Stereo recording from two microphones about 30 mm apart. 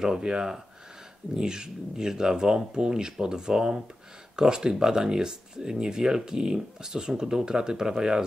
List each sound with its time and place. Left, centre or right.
0.0 s speech: right